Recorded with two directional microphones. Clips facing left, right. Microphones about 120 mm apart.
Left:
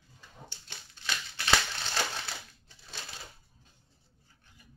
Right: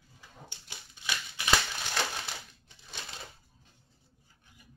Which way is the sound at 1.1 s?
15° right (ahead or behind).